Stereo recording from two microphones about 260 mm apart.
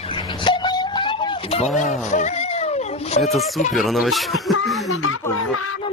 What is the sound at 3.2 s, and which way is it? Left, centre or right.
Speech, centre.